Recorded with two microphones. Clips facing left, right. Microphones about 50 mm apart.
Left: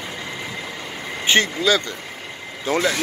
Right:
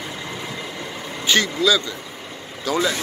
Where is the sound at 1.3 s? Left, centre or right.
Left.